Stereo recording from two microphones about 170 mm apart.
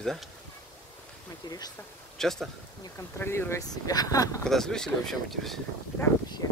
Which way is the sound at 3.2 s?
15° left (ahead or behind).